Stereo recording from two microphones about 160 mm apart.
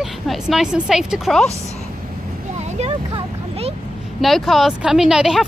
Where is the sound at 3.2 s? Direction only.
40° right (ahead or behind).